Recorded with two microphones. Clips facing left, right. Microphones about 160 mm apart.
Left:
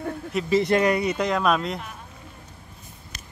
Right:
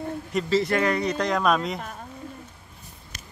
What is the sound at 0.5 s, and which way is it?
A man's voice, 15° left (ahead or behind).